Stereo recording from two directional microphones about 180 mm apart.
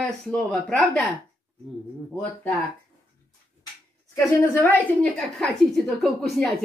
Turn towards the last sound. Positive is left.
turn(degrees=0)  # may be behind; listen again after turning